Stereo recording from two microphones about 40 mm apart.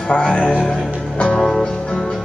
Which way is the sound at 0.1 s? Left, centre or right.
Left.